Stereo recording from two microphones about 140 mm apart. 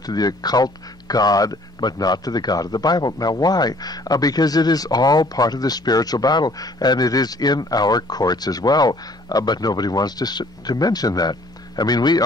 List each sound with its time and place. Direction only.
0.0 s speech: 30° left (ahead or behind)